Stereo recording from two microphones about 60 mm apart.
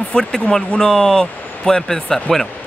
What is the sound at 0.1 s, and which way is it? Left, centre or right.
Speech, centre.